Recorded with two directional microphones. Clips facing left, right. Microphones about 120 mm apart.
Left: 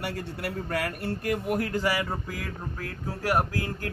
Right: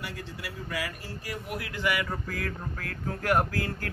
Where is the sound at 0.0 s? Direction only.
60° left (ahead or behind); by 2.1 s 30° left (ahead or behind).